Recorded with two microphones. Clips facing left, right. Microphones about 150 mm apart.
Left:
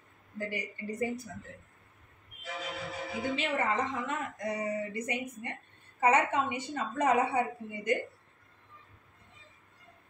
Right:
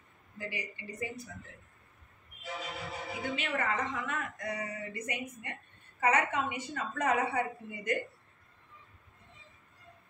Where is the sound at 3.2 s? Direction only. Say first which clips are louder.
Left 3 dB; 30° left (ahead or behind).